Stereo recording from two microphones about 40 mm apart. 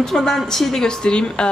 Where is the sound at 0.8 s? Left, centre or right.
Left.